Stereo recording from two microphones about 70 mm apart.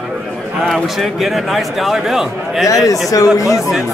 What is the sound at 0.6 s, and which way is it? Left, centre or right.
Speech, centre.